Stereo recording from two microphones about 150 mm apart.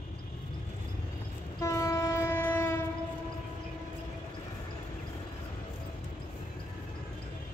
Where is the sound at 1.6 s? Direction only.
20° left (ahead or behind).